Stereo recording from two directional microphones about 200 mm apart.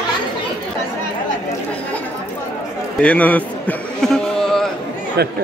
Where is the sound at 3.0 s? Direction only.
5° left (ahead or behind).